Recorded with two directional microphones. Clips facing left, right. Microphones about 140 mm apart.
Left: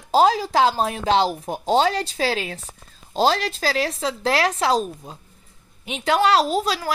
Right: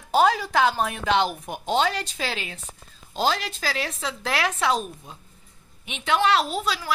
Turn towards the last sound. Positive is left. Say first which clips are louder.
# left 4 dB
turn(degrees=40)  # may be behind; listen again after turning